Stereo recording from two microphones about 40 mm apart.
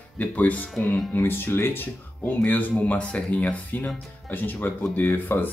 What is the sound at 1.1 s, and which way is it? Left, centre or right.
Speech, left.